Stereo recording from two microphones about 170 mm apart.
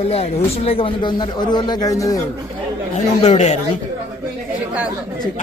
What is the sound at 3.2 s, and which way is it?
Speech, 40° left (ahead or behind).